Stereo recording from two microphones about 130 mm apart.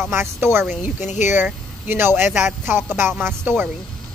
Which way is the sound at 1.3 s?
15° right (ahead or behind).